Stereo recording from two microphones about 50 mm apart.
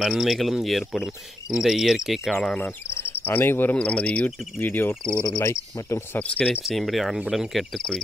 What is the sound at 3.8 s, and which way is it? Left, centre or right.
Cricket, left.